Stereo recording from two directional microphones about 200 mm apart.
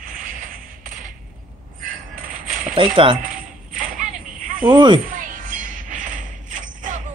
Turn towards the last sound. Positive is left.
turn(degrees=-40)  # may be behind; listen again after turning